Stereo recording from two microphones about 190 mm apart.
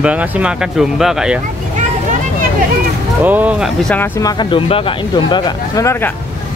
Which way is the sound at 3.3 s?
10° right (ahead or behind).